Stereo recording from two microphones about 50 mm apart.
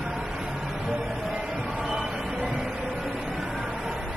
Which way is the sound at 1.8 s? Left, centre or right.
Centre.